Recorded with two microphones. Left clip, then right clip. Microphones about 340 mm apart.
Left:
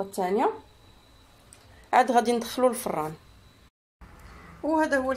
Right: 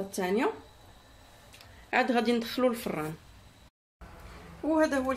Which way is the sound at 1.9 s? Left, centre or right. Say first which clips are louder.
Left 6 dB; left.